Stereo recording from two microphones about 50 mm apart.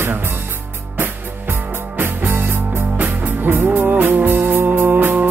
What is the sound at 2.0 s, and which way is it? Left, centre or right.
Music, right.